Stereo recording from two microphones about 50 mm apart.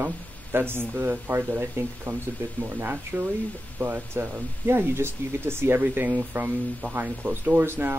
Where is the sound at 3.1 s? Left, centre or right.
Right.